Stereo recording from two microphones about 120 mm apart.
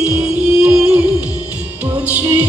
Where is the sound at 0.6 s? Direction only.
10° right (ahead or behind).